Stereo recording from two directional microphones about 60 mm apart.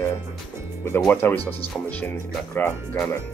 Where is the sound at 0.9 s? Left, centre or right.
Left.